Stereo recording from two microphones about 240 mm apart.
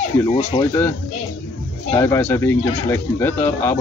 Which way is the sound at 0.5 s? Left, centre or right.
Centre.